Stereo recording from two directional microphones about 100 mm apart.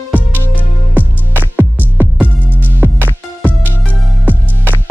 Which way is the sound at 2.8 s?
15° right (ahead or behind).